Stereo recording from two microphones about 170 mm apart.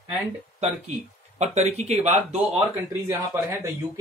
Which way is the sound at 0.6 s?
40° right (ahead or behind).